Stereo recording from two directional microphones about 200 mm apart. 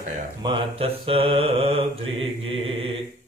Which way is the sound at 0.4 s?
25° right (ahead or behind).